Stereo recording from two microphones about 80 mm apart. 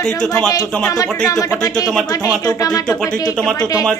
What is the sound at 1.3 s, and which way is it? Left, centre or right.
Speech, left.